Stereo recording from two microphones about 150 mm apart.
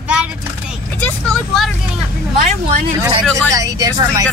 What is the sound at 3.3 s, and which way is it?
Speech, 25° right (ahead or behind).